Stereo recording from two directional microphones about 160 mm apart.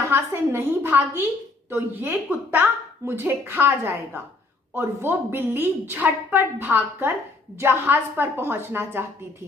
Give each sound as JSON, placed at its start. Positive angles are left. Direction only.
{"t": 0.1, "sound": "a woman's voice", "side_deg": -15}